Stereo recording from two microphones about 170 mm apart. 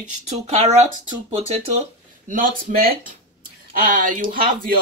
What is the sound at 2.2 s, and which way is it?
Speech, 55° right (ahead or behind).